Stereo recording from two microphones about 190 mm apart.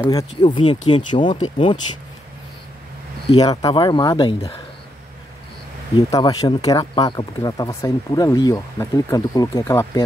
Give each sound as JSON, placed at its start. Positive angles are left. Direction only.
{"t": 0.0, "sound": "speech", "side_deg": 20}
{"t": 3.3, "sound": "speech", "side_deg": 25}
{"t": 5.9, "sound": "speech", "side_deg": 25}